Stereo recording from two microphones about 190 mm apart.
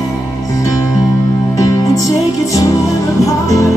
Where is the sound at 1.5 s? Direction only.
20° left (ahead or behind).